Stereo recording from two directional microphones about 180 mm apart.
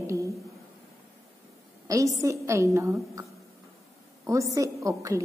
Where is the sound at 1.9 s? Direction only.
20° right (ahead or behind).